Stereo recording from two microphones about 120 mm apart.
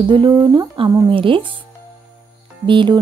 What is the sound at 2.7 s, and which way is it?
Speech, 45° right (ahead or behind).